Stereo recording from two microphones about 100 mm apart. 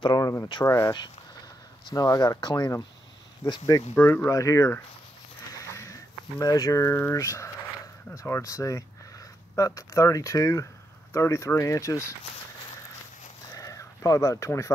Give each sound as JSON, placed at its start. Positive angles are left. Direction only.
{"t": 0.0, "sound": "speech", "side_deg": 40}
{"t": 1.9, "sound": "speech", "side_deg": 40}
{"t": 3.9, "sound": "speech", "side_deg": 20}
{"t": 5.5, "sound": "a sound", "side_deg": 30}
{"t": 8.1, "sound": "speech", "side_deg": 35}
{"t": 13.6, "sound": "a sound", "side_deg": 35}